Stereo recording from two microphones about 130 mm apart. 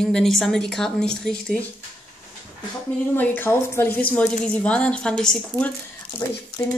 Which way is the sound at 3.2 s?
15° left (ahead or behind).